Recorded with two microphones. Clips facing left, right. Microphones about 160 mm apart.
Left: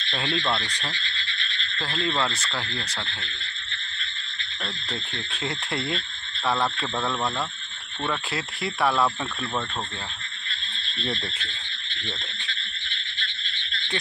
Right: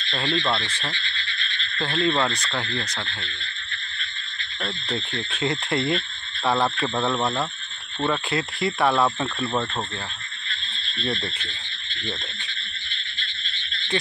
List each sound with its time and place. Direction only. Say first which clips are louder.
0.1 s speech: right 3 dB; 10° left (ahead or behind)
1.9 s speech: right 4 dB; centre (ahead or behind)
4.8 s speech: right 5 dB; 5° right (ahead or behind)
6.8 s speech: right 4 dB; 15° right (ahead or behind)
8.3 s speech: right 5 dB; centre (ahead or behind)
8.9 s speech: right 2 dB; 10° right (ahead or behind)